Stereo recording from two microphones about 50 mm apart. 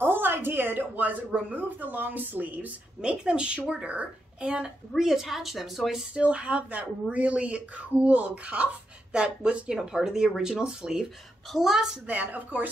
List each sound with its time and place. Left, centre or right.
0.0 s a woman's voice: right
3.0 s a woman's voice: centre
6.1 s speech: right; by 11.9 s centre
12.1 s a woman's voice: right